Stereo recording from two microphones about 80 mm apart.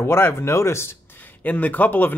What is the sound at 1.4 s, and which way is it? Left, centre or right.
Speech, left.